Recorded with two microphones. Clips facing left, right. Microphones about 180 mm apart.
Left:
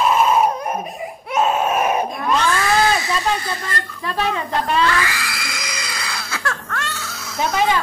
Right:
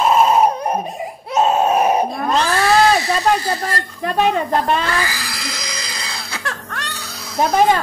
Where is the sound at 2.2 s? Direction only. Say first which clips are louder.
Right 1 dB; 35° right (ahead or behind).